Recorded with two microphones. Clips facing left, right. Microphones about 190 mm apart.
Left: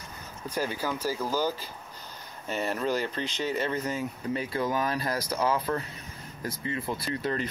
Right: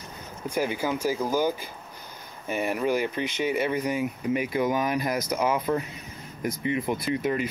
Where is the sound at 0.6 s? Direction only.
15° right (ahead or behind).